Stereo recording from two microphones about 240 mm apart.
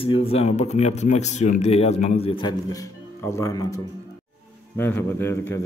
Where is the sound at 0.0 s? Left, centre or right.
Left.